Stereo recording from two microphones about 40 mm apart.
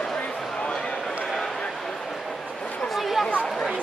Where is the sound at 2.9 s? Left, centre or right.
Centre.